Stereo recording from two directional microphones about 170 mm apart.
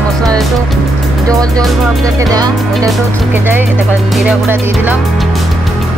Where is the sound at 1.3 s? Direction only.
20° right (ahead or behind).